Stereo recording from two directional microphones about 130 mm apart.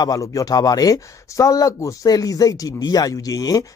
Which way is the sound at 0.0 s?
25° left (ahead or behind).